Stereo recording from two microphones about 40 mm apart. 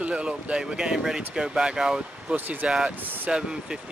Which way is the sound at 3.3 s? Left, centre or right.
Right.